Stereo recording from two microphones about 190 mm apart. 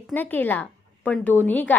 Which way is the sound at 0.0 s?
10° left (ahead or behind).